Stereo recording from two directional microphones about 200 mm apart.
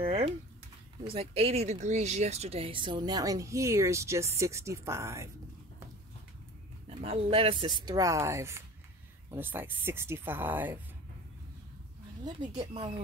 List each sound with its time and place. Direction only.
0.0 s a sound: 30° right (ahead or behind)
1.0 s speech: 30° right (ahead or behind)
7.0 s speech: 30° right (ahead or behind); by 10.8 s 10° right (ahead or behind)
12.5 s speech: 25° right (ahead or behind)